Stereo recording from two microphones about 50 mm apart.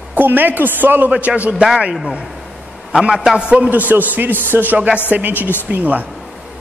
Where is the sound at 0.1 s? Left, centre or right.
Right.